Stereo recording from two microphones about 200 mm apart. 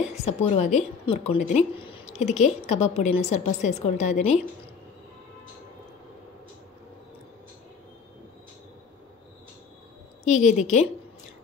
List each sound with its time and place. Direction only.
0.2 s a woman's voice: 30° left (ahead or behind)
10.2 s a woman's voice: 35° left (ahead or behind)